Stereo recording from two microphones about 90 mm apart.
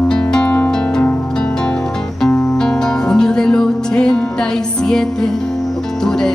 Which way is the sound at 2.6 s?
5° left (ahead or behind).